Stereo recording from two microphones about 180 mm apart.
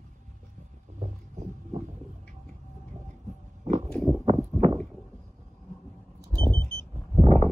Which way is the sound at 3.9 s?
5° left (ahead or behind).